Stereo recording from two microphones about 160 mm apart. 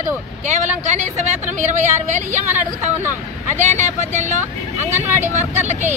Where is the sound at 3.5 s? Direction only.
45° right (ahead or behind).